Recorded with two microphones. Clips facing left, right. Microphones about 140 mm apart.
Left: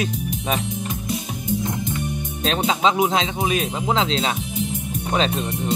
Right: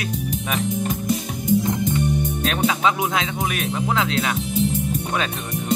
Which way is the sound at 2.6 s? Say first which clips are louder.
Left 2 dB; 25° left (ahead or behind).